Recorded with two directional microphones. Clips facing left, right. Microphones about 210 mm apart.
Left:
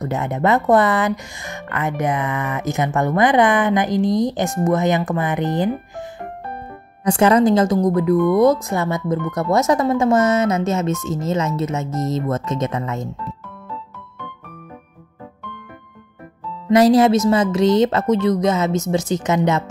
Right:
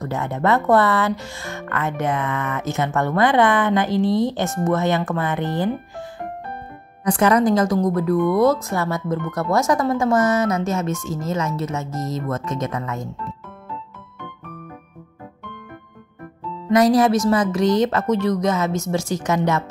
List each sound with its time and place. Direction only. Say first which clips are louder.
0.0 s speech: left 2 dB; 20° left (ahead or behind)
7.1 s speech: left 3 dB; 25° left (ahead or behind)
16.7 s speech: left 3 dB; 25° left (ahead or behind)